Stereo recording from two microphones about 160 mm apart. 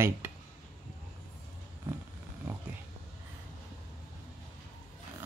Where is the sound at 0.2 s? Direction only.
15° right (ahead or behind).